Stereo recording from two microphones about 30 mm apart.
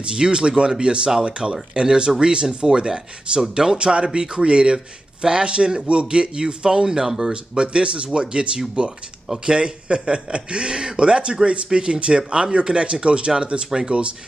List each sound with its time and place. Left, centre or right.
0.0 s speech: right
3.3 s speech: centre
3.7 s speech: right; by 7.3 s centre
7.5 s speech: right
13.7 s speech: right